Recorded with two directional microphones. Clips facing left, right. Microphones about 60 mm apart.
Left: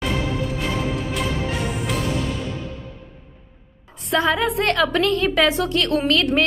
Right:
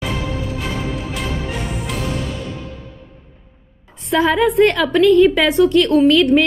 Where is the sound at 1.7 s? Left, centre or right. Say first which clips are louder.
Even; centre.